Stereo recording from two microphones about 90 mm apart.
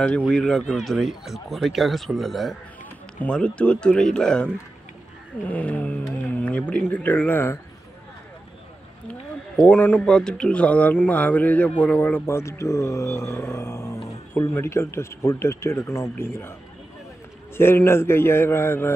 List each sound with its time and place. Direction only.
0.3 s speech: 5° left (ahead or behind)
3.2 s a man's voice: 10° left (ahead or behind)
9.6 s a man's voice: 20° left (ahead or behind)
17.6 s speech: 25° left (ahead or behind)